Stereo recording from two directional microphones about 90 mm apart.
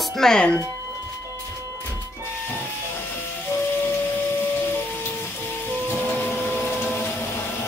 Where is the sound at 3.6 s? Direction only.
20° left (ahead or behind).